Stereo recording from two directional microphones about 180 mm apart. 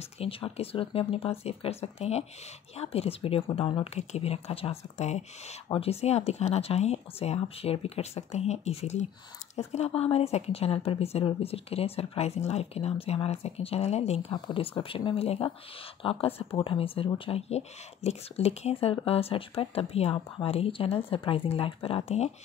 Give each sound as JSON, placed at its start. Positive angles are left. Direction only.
{"t": 0.2, "sound": "speech", "side_deg": 30}